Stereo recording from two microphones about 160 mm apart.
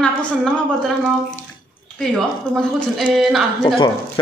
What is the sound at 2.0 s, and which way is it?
Speech, centre (ahead or behind).